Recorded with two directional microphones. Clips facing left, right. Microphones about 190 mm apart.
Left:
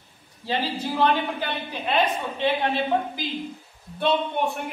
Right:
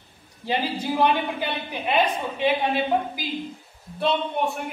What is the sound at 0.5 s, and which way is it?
A woman's voice, 15° right (ahead or behind).